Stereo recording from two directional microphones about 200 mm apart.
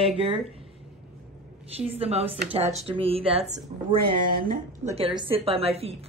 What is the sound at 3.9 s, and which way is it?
Speech, 50° right (ahead or behind).